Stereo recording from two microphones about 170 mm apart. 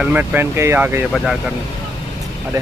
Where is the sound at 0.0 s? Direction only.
10° right (ahead or behind).